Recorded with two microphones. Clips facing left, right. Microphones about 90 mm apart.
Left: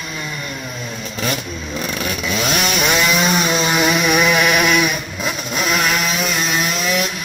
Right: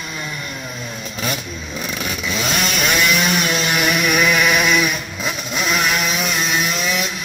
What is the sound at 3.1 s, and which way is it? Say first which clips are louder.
Chainsaw: left 2 dB; 30° left (ahead or behind).